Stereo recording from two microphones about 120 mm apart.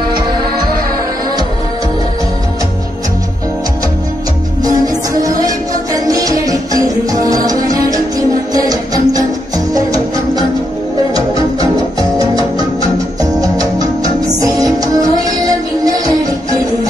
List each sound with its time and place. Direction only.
4.8 s music: 30° right (ahead or behind)
13.2 s music: 30° right (ahead or behind)